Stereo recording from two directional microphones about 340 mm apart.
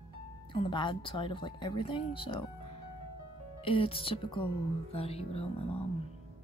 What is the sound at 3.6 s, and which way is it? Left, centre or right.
Speech, centre.